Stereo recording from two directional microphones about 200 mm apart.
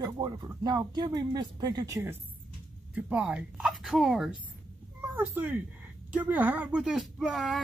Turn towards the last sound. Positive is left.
turn(degrees=0)  # may be behind; listen again after turning